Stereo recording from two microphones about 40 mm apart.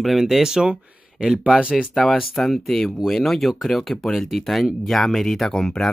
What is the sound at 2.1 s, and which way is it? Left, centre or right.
Speech, centre.